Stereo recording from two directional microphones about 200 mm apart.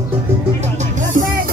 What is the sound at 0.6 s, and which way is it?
Music, 35° right (ahead or behind).